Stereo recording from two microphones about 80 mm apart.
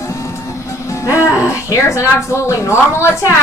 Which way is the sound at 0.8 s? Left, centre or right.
Left.